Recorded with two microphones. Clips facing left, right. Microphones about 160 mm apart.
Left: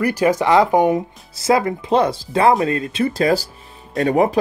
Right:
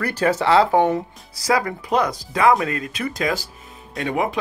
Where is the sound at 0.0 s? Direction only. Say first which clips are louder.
Left 3 dB; 10° left (ahead or behind).